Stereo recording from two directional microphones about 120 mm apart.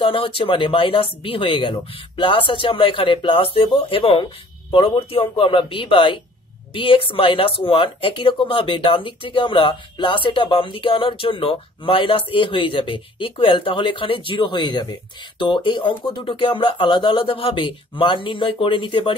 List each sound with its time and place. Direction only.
0.0 s speech: 50° left (ahead or behind)